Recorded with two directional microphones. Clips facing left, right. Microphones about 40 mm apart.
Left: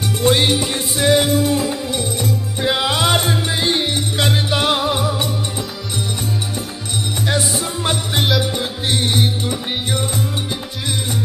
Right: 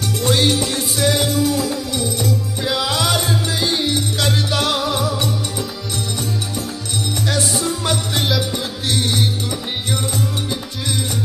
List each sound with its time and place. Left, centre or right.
0.3 s music: centre
7.2 s music: left